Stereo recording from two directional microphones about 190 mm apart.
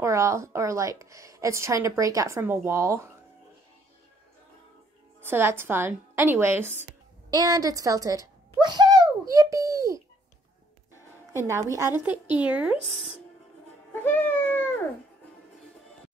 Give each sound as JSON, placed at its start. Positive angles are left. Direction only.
{"t": 0.0, "sound": "a woman's voice", "side_deg": -15}
{"t": 5.2, "sound": "a woman's voice", "side_deg": -10}
{"t": 7.2, "sound": "a sound", "side_deg": -20}
{"t": 11.3, "sound": "a woman's voice", "side_deg": -15}
{"t": 13.9, "sound": "music", "side_deg": 10}